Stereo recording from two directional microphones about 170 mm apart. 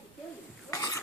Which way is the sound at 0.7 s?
20° left (ahead or behind).